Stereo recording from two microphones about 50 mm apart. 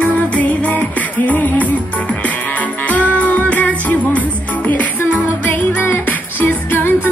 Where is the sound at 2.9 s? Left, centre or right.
Left.